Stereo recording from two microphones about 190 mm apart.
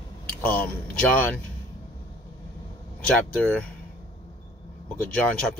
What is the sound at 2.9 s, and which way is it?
Speech, 5° left (ahead or behind).